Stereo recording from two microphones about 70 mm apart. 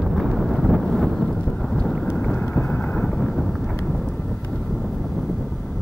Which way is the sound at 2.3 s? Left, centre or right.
Left.